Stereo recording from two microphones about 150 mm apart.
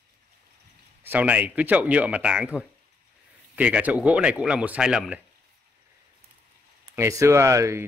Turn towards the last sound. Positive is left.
turn(degrees=-20)  # may be behind; listen again after turning